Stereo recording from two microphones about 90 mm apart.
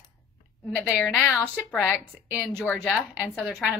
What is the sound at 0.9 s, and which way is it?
A woman's voice, 10° left (ahead or behind).